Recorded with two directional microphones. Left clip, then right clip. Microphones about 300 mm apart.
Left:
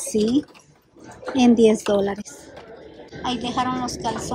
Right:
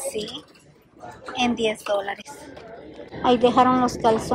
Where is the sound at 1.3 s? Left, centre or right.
Left.